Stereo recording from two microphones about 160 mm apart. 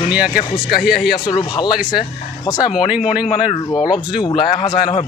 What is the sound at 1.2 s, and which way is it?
Speech, 25° left (ahead or behind).